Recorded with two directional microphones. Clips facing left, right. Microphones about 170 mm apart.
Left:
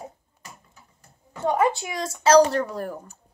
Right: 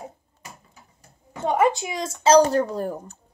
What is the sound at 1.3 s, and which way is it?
Speech, 20° right (ahead or behind).